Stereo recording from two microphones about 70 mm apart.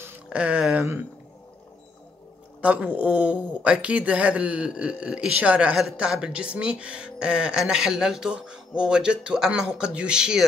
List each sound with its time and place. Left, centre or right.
0.3 s speech: centre
2.6 s speech: centre